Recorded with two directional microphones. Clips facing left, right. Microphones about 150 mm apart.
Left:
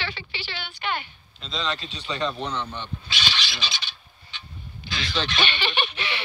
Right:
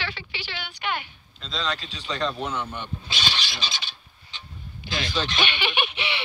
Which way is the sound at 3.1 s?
40° right (ahead or behind).